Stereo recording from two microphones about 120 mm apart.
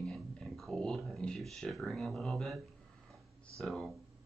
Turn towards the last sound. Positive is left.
turn(degrees=5)  # may be behind; listen again after turning